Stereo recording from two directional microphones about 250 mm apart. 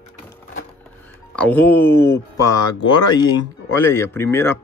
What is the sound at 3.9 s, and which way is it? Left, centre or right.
Speech, centre.